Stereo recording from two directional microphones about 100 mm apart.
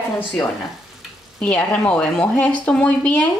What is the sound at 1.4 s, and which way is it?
Speech, 10° left (ahead or behind).